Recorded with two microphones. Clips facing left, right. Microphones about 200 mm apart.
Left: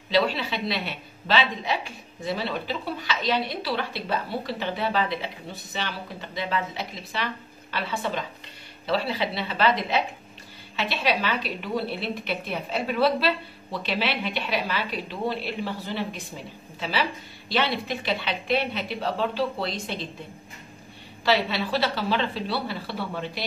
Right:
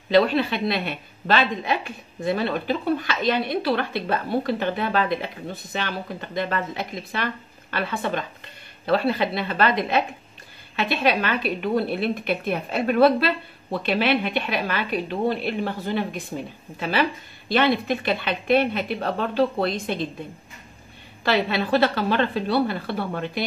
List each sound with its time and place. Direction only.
0.1 s a woman's voice: 55° right (ahead or behind)
21.2 s a woman's voice: 50° right (ahead or behind)